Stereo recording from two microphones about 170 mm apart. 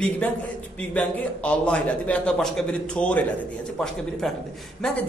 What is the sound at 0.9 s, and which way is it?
A man's voice, 5° left (ahead or behind).